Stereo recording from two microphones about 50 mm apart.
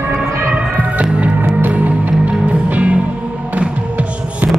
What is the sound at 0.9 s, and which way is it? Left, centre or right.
Music, right.